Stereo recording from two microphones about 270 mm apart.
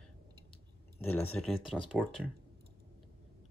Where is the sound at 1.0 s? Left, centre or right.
Centre.